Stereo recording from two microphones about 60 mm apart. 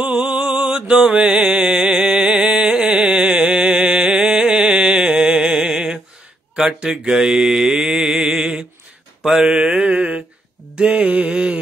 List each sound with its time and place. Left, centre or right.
0.0 s a sound: right
1.0 s music: centre
6.5 s mantra: centre
9.6 s mantra: right